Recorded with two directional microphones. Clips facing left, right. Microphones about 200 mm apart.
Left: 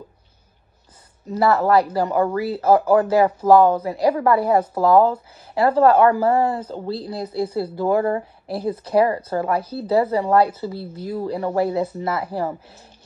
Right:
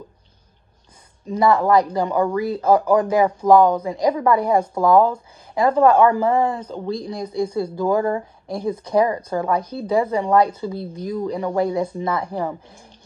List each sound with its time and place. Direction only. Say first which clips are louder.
1.3 s a woman's voice: right 1 dB; 5° left (ahead or behind)
10.7 s speech: right 2 dB; 15° right (ahead or behind)
11.3 s a woman's voice: left 1 dB; 5° left (ahead or behind)